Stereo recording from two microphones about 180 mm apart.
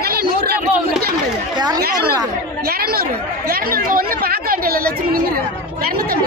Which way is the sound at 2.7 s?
55° right (ahead or behind).